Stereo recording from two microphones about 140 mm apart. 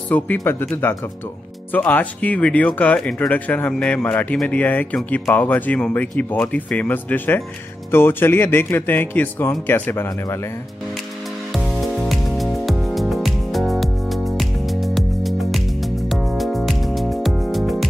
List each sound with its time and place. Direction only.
0.1 s speech: 15° left (ahead or behind)
1.7 s speech: 10° left (ahead or behind)
11.5 s music: 5° right (ahead or behind)